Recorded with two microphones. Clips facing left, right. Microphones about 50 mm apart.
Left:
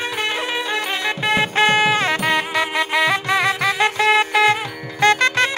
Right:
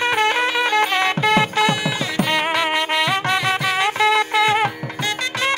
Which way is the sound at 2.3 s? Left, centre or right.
Right.